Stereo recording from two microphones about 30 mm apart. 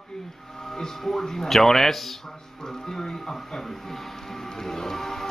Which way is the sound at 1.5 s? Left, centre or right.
Centre.